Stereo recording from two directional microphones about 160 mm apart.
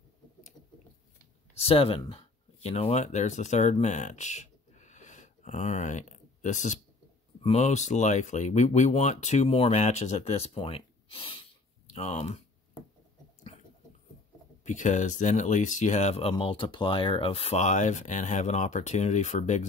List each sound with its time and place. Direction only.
1.6 s speech: 35° left (ahead or behind)
14.6 s speech: 50° left (ahead or behind)